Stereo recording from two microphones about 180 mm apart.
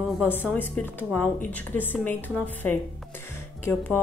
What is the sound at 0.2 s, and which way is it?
A woman's voice, 10° left (ahead or behind).